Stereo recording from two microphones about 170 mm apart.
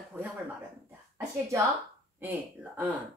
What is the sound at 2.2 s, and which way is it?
Speech, 10° right (ahead or behind).